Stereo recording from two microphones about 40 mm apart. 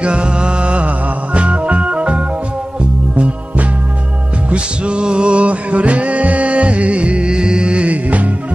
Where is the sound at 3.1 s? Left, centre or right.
Right.